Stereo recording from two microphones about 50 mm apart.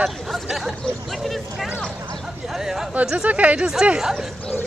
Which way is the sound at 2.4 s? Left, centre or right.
Centre.